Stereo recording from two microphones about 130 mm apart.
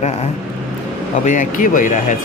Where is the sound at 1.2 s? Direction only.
80° left.